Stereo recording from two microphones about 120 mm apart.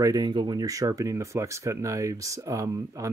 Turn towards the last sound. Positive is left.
turn(degrees=-25)  # may be behind; listen again after turning